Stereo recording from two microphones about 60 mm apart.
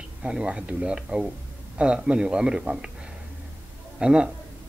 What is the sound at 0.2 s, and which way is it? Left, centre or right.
Speech, centre.